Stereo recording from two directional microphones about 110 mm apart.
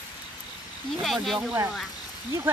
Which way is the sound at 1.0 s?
Centre (ahead or behind).